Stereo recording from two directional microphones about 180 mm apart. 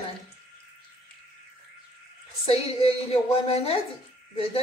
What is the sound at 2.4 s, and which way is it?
A woman's voice, 35° left (ahead or behind).